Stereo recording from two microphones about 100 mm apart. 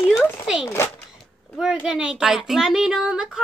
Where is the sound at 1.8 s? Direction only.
10° right (ahead or behind).